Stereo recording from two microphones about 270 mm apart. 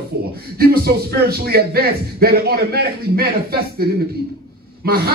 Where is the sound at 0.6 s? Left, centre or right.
Right.